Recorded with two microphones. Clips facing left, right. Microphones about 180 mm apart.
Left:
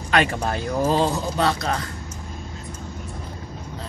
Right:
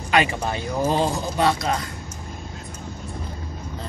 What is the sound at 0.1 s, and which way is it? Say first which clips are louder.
Speech: even; 5° right (ahead or behind).